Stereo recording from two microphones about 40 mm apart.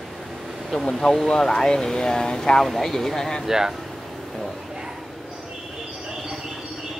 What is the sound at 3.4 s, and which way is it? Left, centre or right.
Speech, centre.